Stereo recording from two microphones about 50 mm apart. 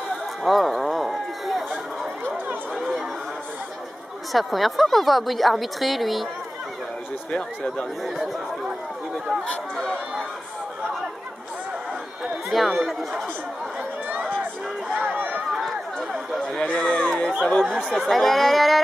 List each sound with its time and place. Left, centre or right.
0.4 s a sound: centre
4.3 s a woman's voice: centre
7.2 s speech: centre
12.4 s a woman's voice: centre
15.0 s run: right
15.5 s run: centre
16.3 s speech: left
17.7 s speech: centre
18.0 s a woman's voice: centre